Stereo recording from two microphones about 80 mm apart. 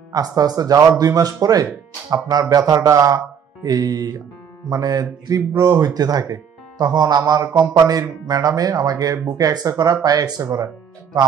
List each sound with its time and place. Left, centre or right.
0.1 s speech: right